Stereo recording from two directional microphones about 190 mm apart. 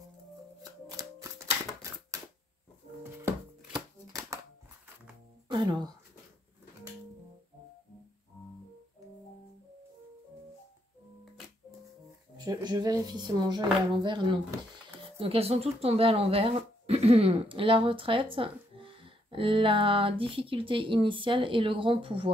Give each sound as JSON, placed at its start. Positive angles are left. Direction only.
{"t": 0.6, "sound": "shuffling cards", "side_deg": -20}
{"t": 3.7, "sound": "shuffling cards", "side_deg": -20}
{"t": 5.5, "sound": "speech", "side_deg": -25}
{"t": 12.4, "sound": "speech", "side_deg": -20}